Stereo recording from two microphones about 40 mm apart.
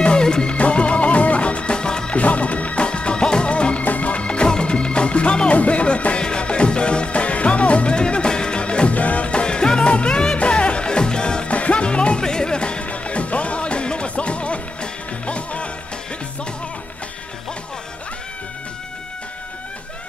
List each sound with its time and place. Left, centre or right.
0.0 s music: left
2.1 s music: left
3.8 s music: left